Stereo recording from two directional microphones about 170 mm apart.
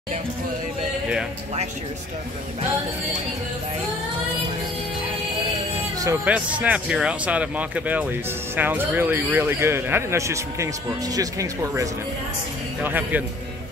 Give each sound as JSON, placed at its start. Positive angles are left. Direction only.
{"t": 6.2, "sound": "speech", "side_deg": -10}